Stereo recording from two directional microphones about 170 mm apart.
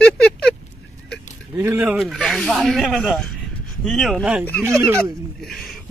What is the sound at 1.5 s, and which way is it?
Speech, 15° right (ahead or behind).